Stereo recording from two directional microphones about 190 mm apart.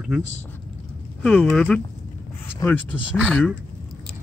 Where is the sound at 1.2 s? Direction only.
5° left (ahead or behind).